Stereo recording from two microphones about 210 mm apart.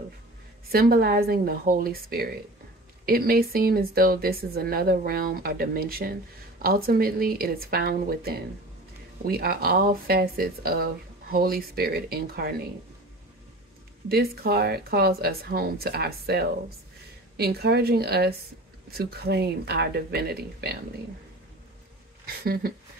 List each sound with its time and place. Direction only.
0.7 s speech: 45° right (ahead or behind)
14.0 s speech: 45° right (ahead or behind)
22.4 s speech: 45° right (ahead or behind)